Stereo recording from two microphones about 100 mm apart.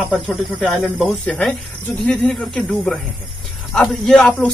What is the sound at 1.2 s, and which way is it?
Speech, 10° left (ahead or behind).